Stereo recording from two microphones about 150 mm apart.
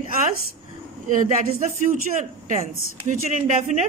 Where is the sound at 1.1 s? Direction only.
60° right (ahead or behind).